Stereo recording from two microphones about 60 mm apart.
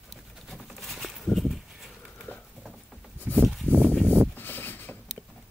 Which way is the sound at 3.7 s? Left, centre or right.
Right.